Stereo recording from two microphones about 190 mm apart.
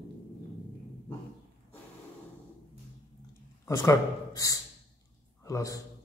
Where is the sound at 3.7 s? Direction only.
15° left (ahead or behind).